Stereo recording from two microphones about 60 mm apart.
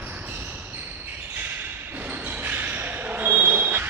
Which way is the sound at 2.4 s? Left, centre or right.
Right.